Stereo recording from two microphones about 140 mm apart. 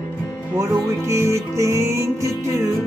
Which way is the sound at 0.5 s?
20° right (ahead or behind).